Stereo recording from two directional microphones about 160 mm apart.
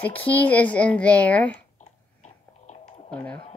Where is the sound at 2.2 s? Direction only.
45° left (ahead or behind).